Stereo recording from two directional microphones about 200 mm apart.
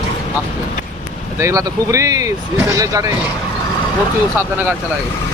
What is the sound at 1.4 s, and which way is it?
Speech, 15° right (ahead or behind).